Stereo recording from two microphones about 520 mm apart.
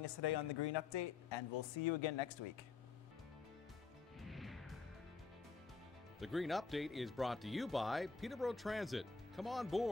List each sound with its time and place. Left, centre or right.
0.0 s speech: left
4.2 s music: centre
6.1 s speech: centre